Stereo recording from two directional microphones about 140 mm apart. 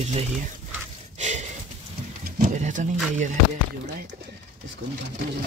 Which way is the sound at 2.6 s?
65° right (ahead or behind).